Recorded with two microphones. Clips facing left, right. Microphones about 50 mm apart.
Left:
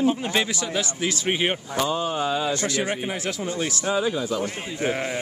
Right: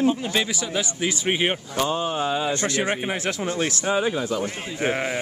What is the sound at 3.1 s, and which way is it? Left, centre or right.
Speech, right.